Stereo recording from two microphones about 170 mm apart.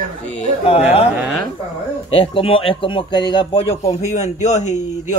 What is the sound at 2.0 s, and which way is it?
A man's voice, 35° left (ahead or behind).